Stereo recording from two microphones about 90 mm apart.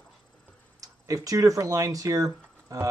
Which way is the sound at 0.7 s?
40° right (ahead or behind).